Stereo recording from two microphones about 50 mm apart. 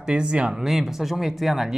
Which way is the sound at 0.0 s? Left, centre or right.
Centre.